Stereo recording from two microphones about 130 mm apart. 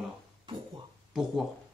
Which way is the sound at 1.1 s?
5° right (ahead or behind).